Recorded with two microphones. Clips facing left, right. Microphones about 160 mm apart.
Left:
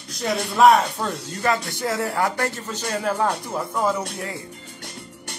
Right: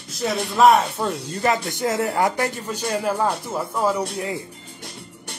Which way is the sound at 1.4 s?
20° right (ahead or behind).